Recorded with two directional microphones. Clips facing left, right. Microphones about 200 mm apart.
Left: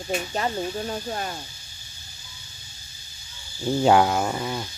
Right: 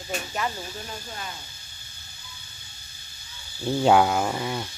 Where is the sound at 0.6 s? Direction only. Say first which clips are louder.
Left 9 dB; 50° left (ahead or behind).